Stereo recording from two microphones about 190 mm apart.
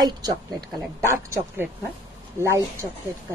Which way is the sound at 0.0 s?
20° right (ahead or behind).